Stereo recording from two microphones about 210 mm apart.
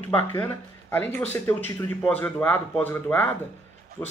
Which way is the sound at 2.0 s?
5° left (ahead or behind).